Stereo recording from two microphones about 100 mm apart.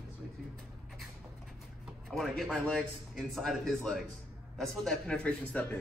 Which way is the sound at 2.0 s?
5° left (ahead or behind).